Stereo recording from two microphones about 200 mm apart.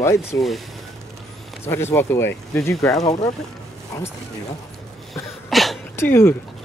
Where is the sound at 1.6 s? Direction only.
10° left (ahead or behind).